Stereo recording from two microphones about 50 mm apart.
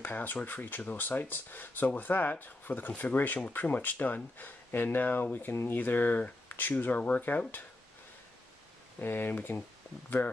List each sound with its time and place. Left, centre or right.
0.0 s speech: left
9.0 s speech: left